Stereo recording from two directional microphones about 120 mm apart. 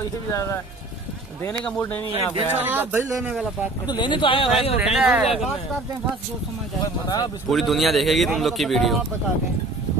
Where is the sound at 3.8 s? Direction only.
40° left (ahead or behind).